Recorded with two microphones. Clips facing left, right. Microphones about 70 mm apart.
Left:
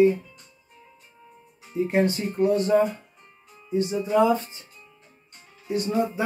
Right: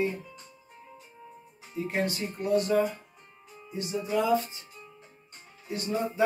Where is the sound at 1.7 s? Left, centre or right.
Left.